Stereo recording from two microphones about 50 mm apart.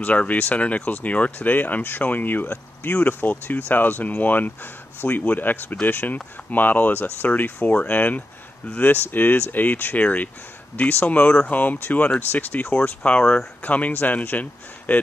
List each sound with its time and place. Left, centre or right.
0.0 s speech: left
13.0 s speech: centre
13.6 s speech: left